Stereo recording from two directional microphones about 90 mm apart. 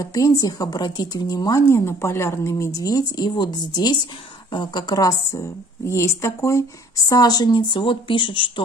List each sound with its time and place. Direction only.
0.0 s a woman's voice: 40° left (ahead or behind)
1.7 s speech: 30° left (ahead or behind)
7.1 s speech: 45° left (ahead or behind); by 8.6 s 70° left (ahead or behind)